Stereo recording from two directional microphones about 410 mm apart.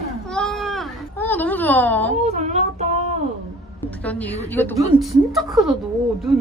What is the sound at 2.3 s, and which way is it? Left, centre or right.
Speech, centre.